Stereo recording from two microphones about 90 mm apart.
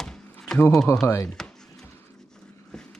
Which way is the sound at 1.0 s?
35° left (ahead or behind).